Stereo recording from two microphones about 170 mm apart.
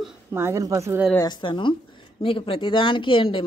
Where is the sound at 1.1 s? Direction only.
25° left (ahead or behind).